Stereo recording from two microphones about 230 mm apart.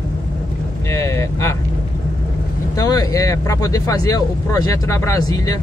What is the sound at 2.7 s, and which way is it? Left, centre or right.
Speech, centre.